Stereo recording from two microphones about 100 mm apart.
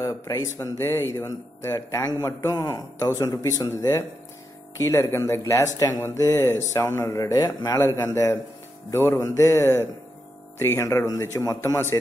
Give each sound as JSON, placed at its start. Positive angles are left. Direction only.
{"t": 0.0, "sound": "speech", "side_deg": 35}